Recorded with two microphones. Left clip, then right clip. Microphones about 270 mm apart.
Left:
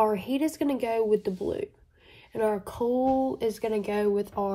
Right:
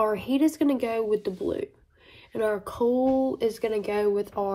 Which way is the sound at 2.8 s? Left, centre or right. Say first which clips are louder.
Right 2 dB; centre.